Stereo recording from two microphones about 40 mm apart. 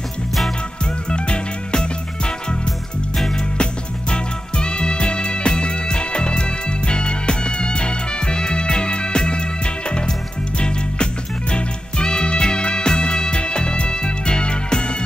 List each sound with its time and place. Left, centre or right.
1.1 s music: left
4.1 s music: left
11.5 s music: left